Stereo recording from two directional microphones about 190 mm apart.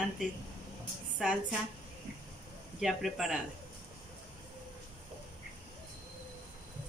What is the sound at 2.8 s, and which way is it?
Speech, centre (ahead or behind).